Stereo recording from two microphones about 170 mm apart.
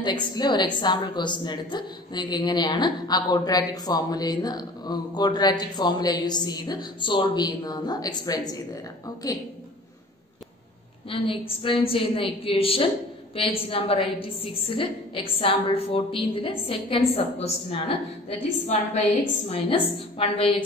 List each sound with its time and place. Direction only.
0.0 s a woman's voice: 25° left (ahead or behind)
11.1 s a woman's voice: 30° left (ahead or behind)